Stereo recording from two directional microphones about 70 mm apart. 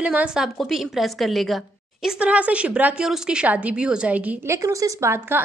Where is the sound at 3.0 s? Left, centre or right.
Centre.